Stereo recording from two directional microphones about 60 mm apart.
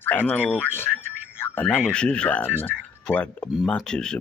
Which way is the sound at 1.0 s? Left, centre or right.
Left.